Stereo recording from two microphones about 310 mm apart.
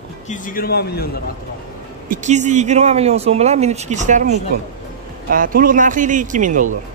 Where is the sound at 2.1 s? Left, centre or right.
Right.